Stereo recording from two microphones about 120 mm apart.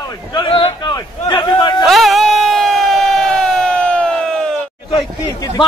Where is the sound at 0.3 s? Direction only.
45° left (ahead or behind).